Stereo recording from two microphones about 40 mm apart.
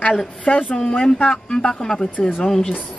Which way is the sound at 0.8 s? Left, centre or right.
Centre.